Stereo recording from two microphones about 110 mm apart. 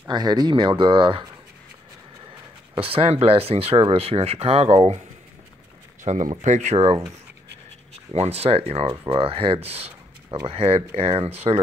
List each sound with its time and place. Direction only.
0.1 s speech: 40° right (ahead or behind)
2.7 s speech: 55° right (ahead or behind)
6.1 s speech: 80° right
6.4 s speech: 90° right; by 11.6 s 65° right (ahead or behind)